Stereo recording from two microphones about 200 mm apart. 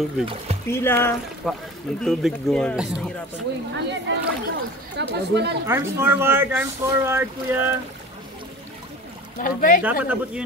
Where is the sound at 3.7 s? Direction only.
60° right (ahead or behind).